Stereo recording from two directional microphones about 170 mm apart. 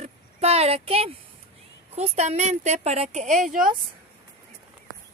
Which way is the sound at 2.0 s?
40° right (ahead or behind).